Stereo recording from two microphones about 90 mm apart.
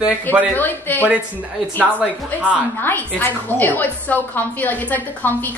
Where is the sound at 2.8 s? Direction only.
20° left (ahead or behind).